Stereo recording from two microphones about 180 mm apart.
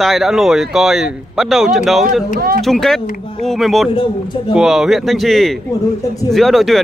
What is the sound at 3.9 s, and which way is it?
Speech, 30° left (ahead or behind).